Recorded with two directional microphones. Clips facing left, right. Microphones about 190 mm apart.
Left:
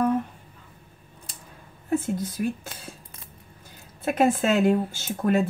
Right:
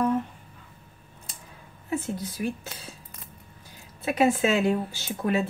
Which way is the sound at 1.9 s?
50° left (ahead or behind).